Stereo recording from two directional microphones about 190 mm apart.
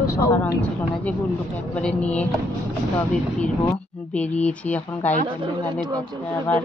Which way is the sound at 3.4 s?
10° left (ahead or behind).